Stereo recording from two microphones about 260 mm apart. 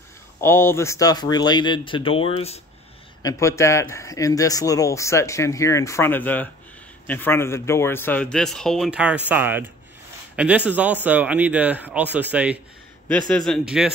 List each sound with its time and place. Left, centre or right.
0.4 s a man's voice: centre